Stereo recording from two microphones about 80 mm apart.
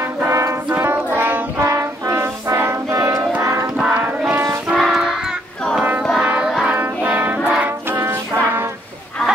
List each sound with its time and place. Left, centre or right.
0.2 s music: right
0.7 s music: right
1.7 s brass instrument: right
3.7 s a sound: centre
4.3 s music: right
4.7 s music: centre
6.2 s music: centre
8.0 s brass instrument: right